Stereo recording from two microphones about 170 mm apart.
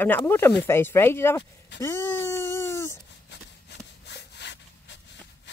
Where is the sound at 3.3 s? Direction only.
85° left.